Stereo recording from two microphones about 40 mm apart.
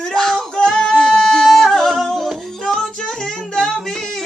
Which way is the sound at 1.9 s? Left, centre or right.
Centre.